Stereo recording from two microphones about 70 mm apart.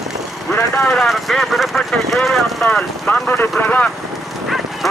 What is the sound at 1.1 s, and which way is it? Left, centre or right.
Speech, centre.